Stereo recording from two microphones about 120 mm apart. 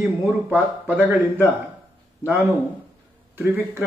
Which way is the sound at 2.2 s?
20° right (ahead or behind).